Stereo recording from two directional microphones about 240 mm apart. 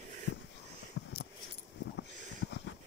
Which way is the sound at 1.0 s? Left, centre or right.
Left.